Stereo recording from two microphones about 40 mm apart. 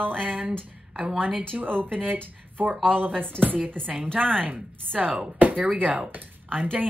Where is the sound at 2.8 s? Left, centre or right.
Right.